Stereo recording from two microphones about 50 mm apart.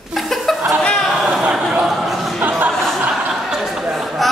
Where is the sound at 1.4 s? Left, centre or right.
Centre.